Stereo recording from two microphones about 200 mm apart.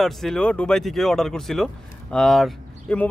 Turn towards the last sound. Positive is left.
turn(degrees=5)  # may be behind; listen again after turning